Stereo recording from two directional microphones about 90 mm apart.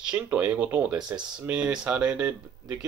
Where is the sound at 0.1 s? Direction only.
20° right (ahead or behind).